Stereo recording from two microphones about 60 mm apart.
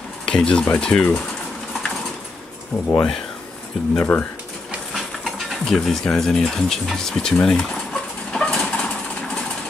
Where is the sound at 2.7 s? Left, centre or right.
Left.